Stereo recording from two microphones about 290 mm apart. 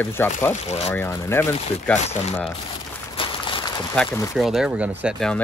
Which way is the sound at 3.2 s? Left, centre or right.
Centre.